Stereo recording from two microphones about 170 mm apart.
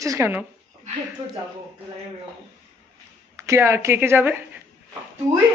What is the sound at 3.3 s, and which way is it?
A woman's voice, 15° right (ahead or behind).